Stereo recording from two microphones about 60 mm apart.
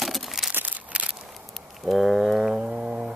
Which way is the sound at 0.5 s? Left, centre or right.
Right.